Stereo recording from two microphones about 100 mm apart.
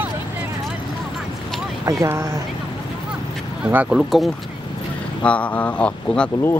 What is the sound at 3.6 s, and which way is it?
Speech, 10° right (ahead or behind).